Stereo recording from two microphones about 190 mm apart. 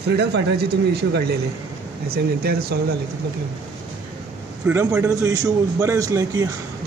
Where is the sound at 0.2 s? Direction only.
60° right (ahead or behind).